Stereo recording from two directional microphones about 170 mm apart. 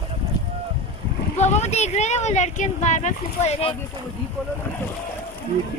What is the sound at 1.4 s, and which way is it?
Speech, 40° left (ahead or behind).